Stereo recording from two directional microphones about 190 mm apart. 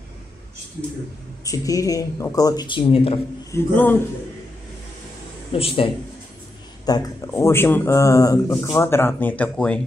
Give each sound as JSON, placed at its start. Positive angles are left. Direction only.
{"t": 1.4, "sound": "speech", "side_deg": 20}
{"t": 3.5, "sound": "speech", "side_deg": 10}
{"t": 5.5, "sound": "speech", "side_deg": 30}
{"t": 6.9, "sound": "speech", "side_deg": 15}